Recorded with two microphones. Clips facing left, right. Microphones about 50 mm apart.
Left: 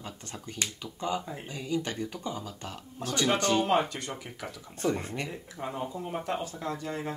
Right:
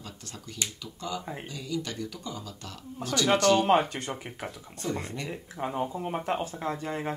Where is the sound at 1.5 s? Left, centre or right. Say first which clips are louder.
Left 3 dB; left.